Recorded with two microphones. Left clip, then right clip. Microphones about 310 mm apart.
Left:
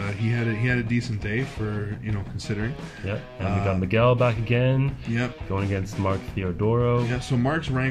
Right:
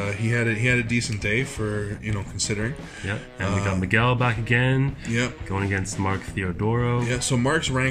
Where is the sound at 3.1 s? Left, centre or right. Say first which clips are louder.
Right 2 dB; centre.